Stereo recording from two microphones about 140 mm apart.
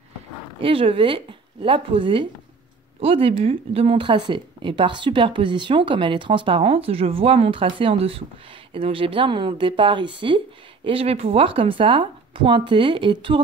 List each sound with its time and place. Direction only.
0.6 s speech: 40° right (ahead or behind)